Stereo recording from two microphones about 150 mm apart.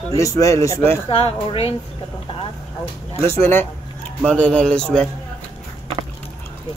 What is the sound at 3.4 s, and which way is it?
A man's voice, 15° left (ahead or behind).